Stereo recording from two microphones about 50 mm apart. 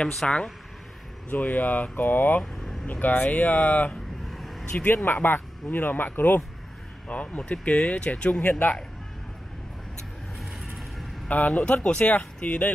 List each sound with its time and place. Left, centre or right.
0.2 s speech: centre
1.3 s speech: left
2.5 s vehicle: centre
2.9 s speech: left
4.3 s vehicle: centre
4.8 s speech: left
7.1 s speech: left
11.2 s speech: left